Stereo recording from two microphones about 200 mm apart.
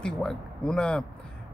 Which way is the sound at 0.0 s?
5° left (ahead or behind).